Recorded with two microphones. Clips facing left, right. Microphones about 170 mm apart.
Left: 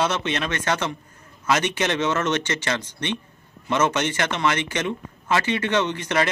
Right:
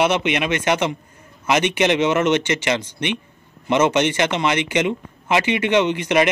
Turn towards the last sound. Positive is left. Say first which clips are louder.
# right 5 dB
turn(degrees=-20)  # may be behind; listen again after turning